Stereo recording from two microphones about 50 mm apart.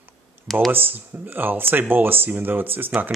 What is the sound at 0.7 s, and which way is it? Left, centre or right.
Speech, right.